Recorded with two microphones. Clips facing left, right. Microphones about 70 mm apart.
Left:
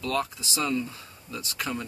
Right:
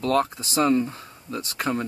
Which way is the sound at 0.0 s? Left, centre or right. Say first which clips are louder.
Right 7 dB; right.